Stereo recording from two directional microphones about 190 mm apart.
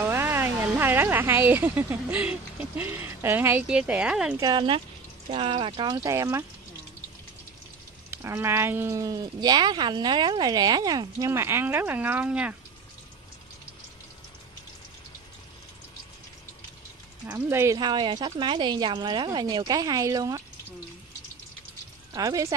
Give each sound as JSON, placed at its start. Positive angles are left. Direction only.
{"t": 0.0, "sound": "speech", "side_deg": -10}
{"t": 4.4, "sound": "speech", "side_deg": -20}
{"t": 8.1, "sound": "speech", "side_deg": -15}
{"t": 17.3, "sound": "speech", "side_deg": -10}
{"t": 22.1, "sound": "speech", "side_deg": -20}